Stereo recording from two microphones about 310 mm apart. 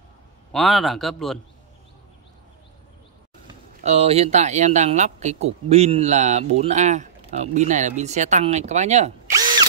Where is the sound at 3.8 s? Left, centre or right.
Centre.